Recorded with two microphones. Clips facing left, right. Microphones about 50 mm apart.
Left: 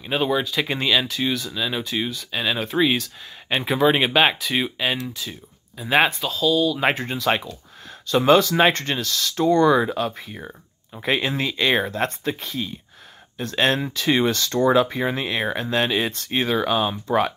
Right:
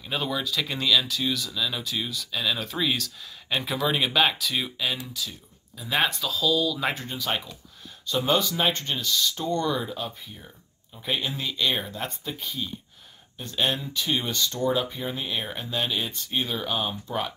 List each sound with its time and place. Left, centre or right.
0.0 s speech: left
6.0 s speech: left
6.8 s speech: left